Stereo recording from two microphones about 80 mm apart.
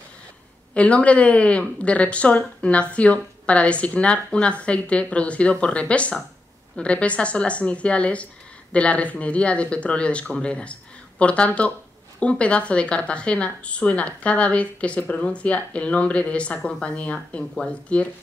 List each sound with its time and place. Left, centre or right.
0.7 s a woman's voice: centre